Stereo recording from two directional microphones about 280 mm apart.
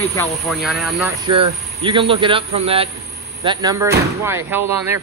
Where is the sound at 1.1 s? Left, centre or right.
Centre.